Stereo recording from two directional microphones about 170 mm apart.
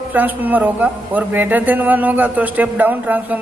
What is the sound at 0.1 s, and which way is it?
A man's voice, 10° right (ahead or behind).